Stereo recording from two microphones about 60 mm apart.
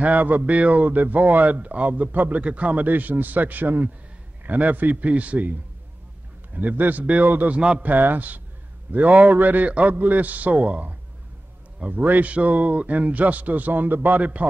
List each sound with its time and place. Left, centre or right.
0.0 s a man's voice: right
7.5 s a man's voice: centre
7.8 s a man's voice: right